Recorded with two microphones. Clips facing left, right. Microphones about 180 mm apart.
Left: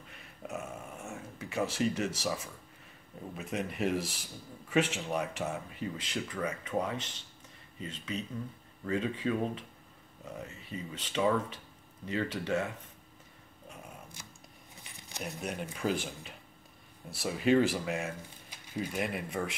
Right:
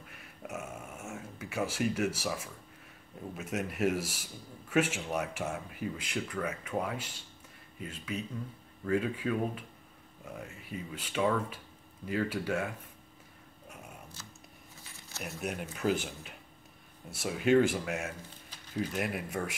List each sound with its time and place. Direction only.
0.1 s dog: 5° right (ahead or behind)
3.3 s speech: 5° right (ahead or behind)
14.2 s a sound: 15° left (ahead or behind)
15.2 s speech: 5° right (ahead or behind)
18.5 s a sound: 10° left (ahead or behind)
18.9 s speech: 5° right (ahead or behind)